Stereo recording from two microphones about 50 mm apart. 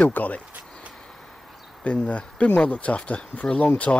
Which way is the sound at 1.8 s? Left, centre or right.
Left.